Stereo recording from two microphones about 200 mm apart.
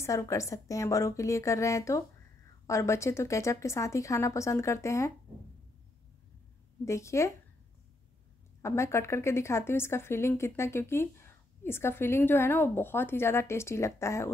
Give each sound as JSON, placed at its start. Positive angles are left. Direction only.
{"t": 0.0, "sound": "speech", "side_deg": 15}
{"t": 6.8, "sound": "speech", "side_deg": 15}
{"t": 8.6, "sound": "speech", "side_deg": 15}